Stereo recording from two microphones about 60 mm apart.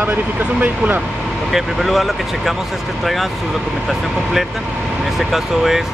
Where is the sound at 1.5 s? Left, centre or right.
Centre.